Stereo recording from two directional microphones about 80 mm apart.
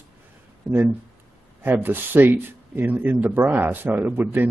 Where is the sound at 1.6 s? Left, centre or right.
Right.